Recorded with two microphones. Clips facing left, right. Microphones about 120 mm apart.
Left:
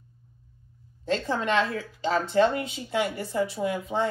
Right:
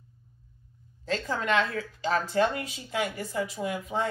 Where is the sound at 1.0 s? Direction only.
25° left (ahead or behind).